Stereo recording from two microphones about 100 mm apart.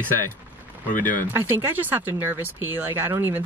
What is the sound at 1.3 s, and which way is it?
Speech, 20° right (ahead or behind).